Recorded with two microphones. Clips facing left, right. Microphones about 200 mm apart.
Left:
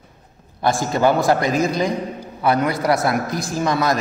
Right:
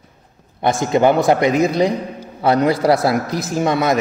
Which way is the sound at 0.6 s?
20° right (ahead or behind).